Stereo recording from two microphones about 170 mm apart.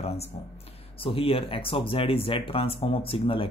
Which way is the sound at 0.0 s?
35° left (ahead or behind).